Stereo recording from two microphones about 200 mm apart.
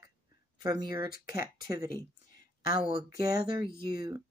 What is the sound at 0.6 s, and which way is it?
Speech, 20° right (ahead or behind).